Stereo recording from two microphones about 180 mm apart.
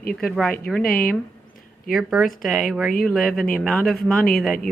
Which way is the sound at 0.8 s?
55° left (ahead or behind).